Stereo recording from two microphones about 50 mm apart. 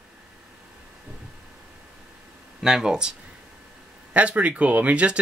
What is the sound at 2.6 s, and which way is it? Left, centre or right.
Speech, centre.